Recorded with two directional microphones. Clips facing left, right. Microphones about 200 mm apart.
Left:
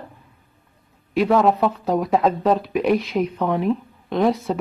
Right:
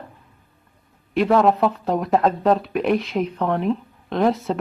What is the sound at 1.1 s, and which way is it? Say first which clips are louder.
Speech: even; centre (ahead or behind).